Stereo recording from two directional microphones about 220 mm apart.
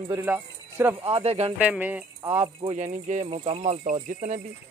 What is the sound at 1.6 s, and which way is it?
Speech, 5° right (ahead or behind).